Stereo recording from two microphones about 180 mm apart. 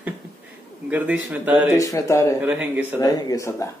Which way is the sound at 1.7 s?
15° left (ahead or behind).